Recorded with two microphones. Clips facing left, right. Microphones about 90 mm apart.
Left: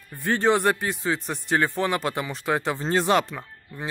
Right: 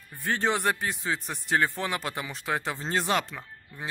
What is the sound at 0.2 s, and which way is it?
Speech, centre (ahead or behind).